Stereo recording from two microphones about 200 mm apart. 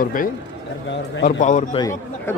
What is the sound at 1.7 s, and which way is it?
Speech, 15° left (ahead or behind).